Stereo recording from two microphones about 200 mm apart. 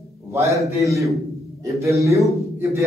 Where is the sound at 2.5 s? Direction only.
15° right (ahead or behind).